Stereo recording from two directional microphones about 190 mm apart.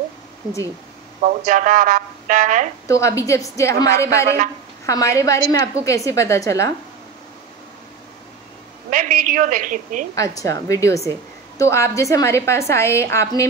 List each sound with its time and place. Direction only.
1.2 s speech: 40° right (ahead or behind)
2.9 s a woman's voice: 15° left (ahead or behind)
8.9 s speech: 45° right (ahead or behind)
10.1 s a woman's voice: 15° left (ahead or behind)